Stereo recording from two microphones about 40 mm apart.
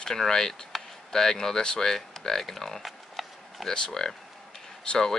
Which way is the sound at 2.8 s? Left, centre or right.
Centre.